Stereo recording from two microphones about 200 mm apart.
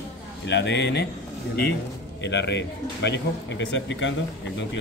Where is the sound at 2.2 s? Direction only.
60° left (ahead or behind).